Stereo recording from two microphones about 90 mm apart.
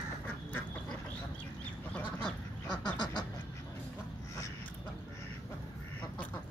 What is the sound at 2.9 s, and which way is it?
Duck, 50° left (ahead or behind).